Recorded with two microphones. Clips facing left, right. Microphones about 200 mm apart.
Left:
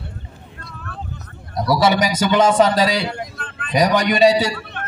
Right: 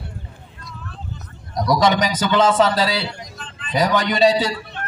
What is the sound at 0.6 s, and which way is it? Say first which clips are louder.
Vehicle: left 3 dB; 60° left (ahead or behind).